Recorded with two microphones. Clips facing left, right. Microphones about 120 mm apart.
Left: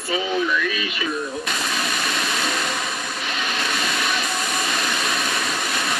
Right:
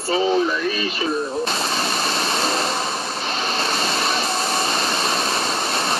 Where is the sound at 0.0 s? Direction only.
30° right (ahead or behind).